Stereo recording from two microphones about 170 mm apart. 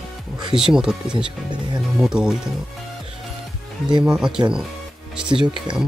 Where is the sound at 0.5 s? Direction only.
5° right (ahead or behind).